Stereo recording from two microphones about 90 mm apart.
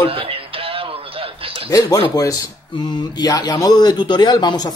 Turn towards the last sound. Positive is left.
turn(degrees=50)  # may be behind; listen again after turning